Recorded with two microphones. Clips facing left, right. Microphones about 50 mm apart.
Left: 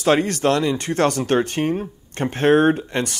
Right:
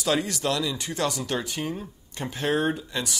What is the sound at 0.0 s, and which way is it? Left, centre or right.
Speech, left.